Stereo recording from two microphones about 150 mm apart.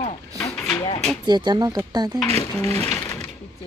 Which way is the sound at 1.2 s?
30° right (ahead or behind).